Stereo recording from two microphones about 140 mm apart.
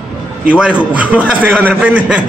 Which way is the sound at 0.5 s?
10° right (ahead or behind).